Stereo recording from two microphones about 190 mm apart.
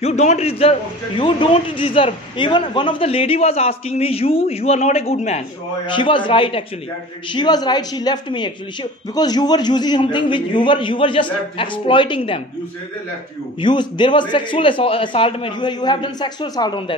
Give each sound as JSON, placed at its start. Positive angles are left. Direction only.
{"t": 0.0, "sound": "a man's voice", "side_deg": 35}
{"t": 13.6, "sound": "a man's voice", "side_deg": 25}